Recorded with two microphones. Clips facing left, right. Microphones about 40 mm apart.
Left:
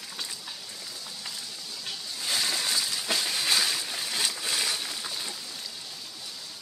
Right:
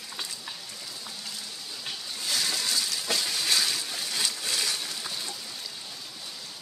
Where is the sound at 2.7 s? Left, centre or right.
Left.